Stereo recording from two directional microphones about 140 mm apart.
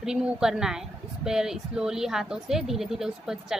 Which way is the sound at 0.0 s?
5° right (ahead or behind).